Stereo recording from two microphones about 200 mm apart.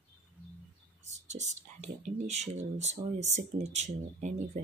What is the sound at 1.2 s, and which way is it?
Speech, 35° right (ahead or behind).